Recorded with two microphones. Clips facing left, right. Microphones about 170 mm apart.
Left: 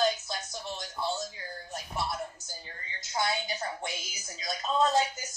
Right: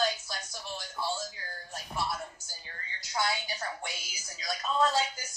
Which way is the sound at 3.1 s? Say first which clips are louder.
Left 1 dB; 20° left (ahead or behind).